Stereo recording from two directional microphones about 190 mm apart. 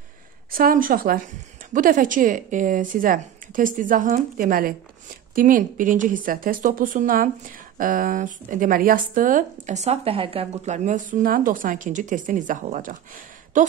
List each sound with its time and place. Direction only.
0.5 s a woman's voice: 50° right (ahead or behind)